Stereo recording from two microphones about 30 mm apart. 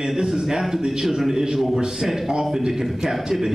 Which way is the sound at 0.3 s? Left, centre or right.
Centre.